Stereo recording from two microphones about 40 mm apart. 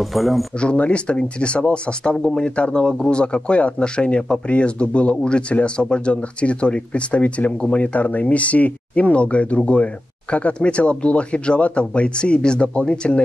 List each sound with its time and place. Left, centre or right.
0.0 s speech: centre
0.7 s speech: left; by 2.5 s centre
2.5 s speech: left